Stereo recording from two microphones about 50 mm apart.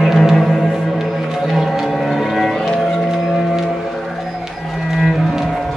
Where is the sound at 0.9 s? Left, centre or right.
Centre.